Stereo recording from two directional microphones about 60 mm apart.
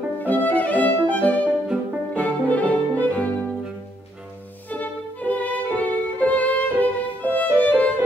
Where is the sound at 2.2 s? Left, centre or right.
Left.